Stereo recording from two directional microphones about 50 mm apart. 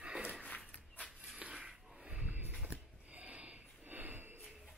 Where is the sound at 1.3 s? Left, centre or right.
Centre; by 4.4 s right.